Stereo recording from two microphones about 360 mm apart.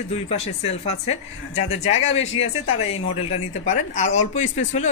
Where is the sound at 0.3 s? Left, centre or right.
Centre.